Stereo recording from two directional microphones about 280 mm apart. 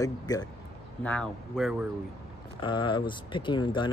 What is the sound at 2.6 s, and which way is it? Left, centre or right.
Speech, centre.